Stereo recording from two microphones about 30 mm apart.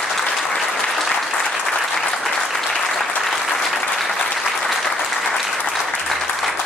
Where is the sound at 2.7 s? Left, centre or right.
Centre.